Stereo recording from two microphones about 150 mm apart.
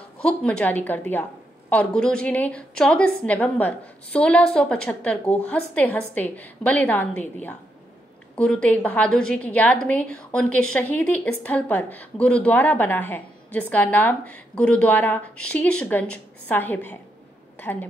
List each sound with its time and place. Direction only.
0.2 s a woman's voice: 5° left (ahead or behind)